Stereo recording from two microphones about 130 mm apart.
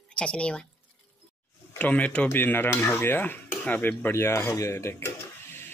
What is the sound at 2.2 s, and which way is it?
Dishes, 15° left (ahead or behind).